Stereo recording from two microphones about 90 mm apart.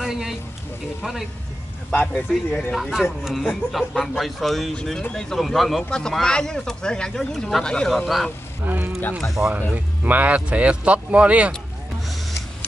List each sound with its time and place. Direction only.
0.0 s a sound: 5° right (ahead or behind)
1.9 s speech: 15° left (ahead or behind)
2.7 s a man's voice: centre (ahead or behind)
8.6 s speech: 20° right (ahead or behind)
9.4 s speech: 10° right (ahead or behind)